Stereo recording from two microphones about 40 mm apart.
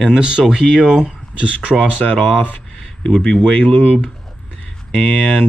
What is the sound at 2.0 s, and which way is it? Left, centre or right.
Speech, left.